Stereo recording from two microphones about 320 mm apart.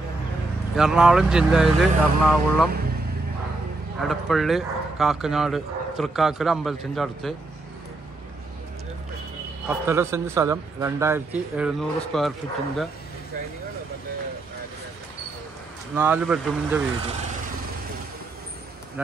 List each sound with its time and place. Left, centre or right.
0.7 s speech: centre
4.1 s speech: centre
9.7 s a man's voice: centre
16.0 s speech: centre
19.0 s speech: centre